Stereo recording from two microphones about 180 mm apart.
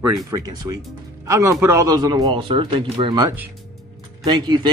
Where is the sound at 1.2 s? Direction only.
15° right (ahead or behind).